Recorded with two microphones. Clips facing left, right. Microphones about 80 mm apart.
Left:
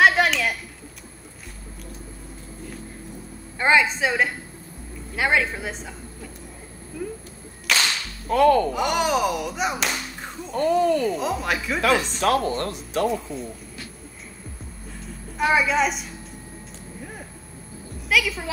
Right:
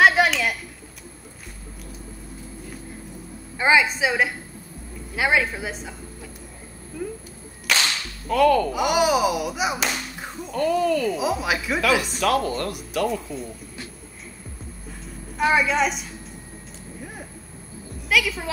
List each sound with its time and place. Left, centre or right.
0.0 s a sound: centre
3.5 s a woman's voice: centre
7.7 s whip: centre
8.3 s speech: left
8.7 s speech: centre
10.5 s speech: left
11.1 s a woman's voice: centre
12.2 s speech: left
13.1 s a woman's voice: centre
15.3 s a woman's voice: centre
18.0 s a woman's voice: centre